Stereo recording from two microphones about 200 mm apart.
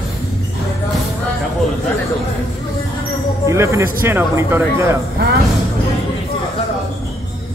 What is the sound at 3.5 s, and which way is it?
A man's voice, 15° right (ahead or behind).